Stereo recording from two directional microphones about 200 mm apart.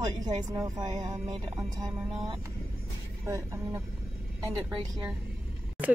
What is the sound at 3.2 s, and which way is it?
Speech, 15° right (ahead or behind).